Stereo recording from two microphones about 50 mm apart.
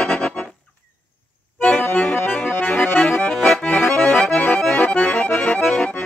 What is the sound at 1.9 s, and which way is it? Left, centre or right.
Accordion, left.